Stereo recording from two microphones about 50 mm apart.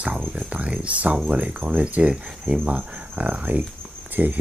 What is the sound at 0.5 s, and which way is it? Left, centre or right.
Speech, right.